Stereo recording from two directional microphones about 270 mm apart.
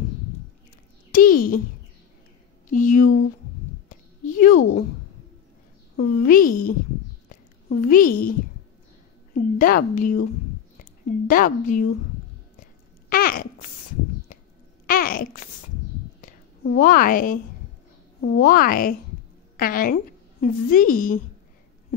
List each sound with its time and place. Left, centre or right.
1.1 s a woman's voice: left
2.7 s speech: left
4.3 s a sound: left
5.9 s a woman's voice: left
7.2 s a sound: left
9.3 s a woman's voice: left
11.2 s a woman's voice: left
13.1 s babbling: left
14.9 s babbling: left
16.7 s a woman's voice: left